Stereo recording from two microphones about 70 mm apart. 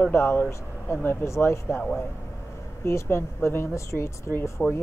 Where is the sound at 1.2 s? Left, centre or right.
Left.